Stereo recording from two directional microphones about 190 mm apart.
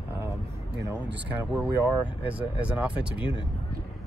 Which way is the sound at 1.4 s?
10° right (ahead or behind).